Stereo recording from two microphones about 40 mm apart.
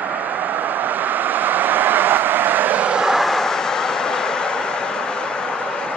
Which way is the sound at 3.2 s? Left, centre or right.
Centre.